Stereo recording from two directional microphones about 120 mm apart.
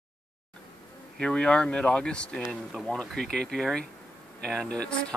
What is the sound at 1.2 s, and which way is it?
Speech, 10° left (ahead or behind).